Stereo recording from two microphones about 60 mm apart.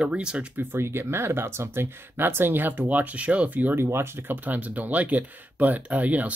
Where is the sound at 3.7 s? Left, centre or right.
Right.